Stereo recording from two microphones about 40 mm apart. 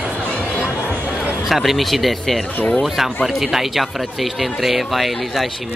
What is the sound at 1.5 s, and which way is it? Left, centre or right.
Speech, centre.